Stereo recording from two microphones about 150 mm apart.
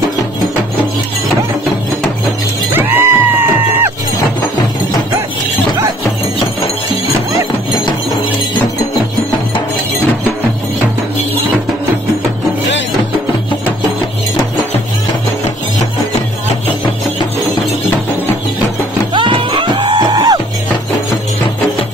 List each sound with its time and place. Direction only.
2.7 s music: 15° right (ahead or behind)
19.1 s music: 30° right (ahead or behind)